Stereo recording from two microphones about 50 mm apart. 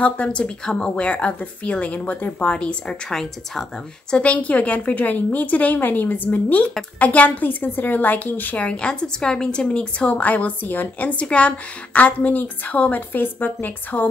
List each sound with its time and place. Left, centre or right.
0.0 s a woman's voice: left
3.1 s a woman's voice: centre
4.1 s a woman's voice: left
8.6 s a woman's voice: left